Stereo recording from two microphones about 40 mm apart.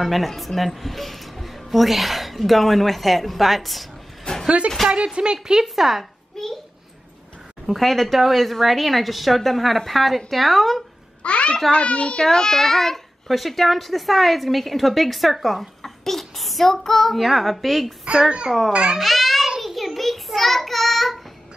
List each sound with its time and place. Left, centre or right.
0.0 s a child's voice: centre
4.2 s a sound: centre
4.8 s speech: right
5.6 s a child's voice: centre
6.4 s a child's voice: centre
7.6 s a child's voice: centre
11.2 s a child's voice: left
12.3 s a child's voice: centre
18.7 s speech: right
18.9 s a child's voice: centre
19.6 s child singing: centre